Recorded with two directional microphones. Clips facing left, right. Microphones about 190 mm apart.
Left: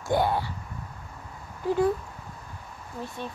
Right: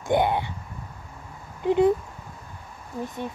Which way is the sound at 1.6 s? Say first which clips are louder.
Right 4 dB; 20° right (ahead or behind).